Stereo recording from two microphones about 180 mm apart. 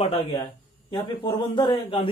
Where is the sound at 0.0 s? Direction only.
30° left (ahead or behind).